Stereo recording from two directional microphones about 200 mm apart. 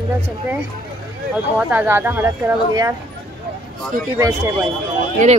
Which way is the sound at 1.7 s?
10° right (ahead or behind).